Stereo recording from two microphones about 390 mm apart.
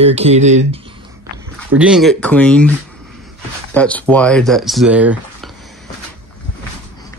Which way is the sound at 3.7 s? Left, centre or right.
Centre.